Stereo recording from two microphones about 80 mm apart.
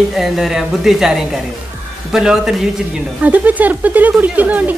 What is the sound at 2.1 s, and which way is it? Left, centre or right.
Speech, centre.